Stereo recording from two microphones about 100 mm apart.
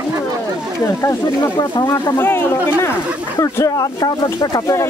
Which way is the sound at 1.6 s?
40° left (ahead or behind).